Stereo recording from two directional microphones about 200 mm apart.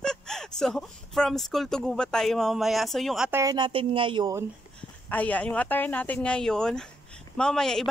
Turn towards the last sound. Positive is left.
turn(degrees=5)  # may be behind; listen again after turning